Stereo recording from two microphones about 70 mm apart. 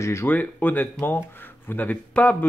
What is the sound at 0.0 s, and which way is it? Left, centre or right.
Speech, left.